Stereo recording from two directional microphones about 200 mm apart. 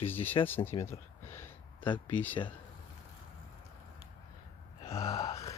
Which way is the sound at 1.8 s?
25° left (ahead or behind).